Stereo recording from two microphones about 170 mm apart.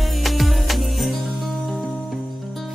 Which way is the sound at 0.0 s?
Centre (ahead or behind).